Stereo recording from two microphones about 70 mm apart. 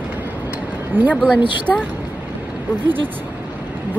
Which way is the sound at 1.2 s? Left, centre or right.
Centre.